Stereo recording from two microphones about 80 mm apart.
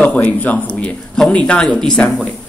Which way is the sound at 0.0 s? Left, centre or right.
Centre.